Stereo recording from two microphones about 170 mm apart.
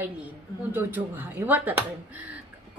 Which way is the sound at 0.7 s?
10° right (ahead or behind).